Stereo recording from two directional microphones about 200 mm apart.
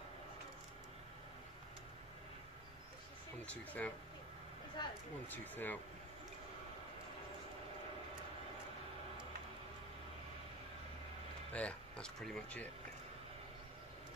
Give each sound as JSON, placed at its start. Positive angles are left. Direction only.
{"t": 3.4, "sound": "speech", "side_deg": 10}
{"t": 4.8, "sound": "speech", "side_deg": 20}
{"t": 5.5, "sound": "speech", "side_deg": 10}
{"t": 11.5, "sound": "speech", "side_deg": 5}